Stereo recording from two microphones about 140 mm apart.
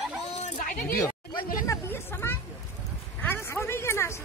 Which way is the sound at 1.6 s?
20° left (ahead or behind).